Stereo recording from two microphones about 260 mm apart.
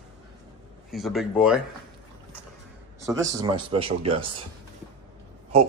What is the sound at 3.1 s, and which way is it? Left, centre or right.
A man's voice, centre.